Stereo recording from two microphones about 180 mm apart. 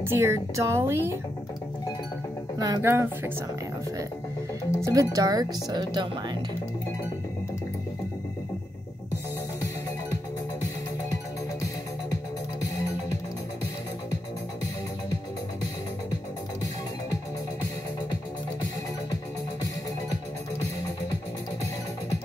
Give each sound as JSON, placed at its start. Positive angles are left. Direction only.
{"t": 0.0, "sound": "speech", "side_deg": -15}
{"t": 2.6, "sound": "speech", "side_deg": -15}
{"t": 4.8, "sound": "speech", "side_deg": -20}